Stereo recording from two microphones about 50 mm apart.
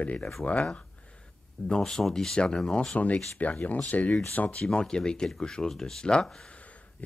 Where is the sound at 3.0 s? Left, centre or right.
Left.